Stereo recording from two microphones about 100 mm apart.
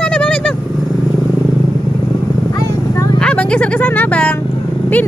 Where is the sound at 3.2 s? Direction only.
10° left (ahead or behind).